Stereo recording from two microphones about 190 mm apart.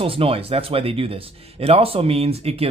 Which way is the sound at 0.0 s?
30° right (ahead or behind).